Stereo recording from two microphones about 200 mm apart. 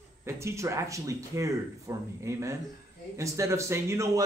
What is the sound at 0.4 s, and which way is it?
Speech, 15° right (ahead or behind).